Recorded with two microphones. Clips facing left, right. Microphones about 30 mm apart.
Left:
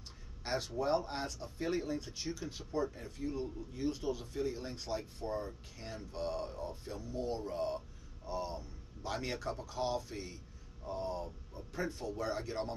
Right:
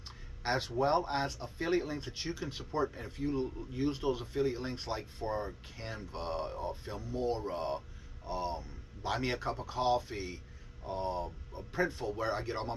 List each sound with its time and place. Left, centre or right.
0.4 s speech: right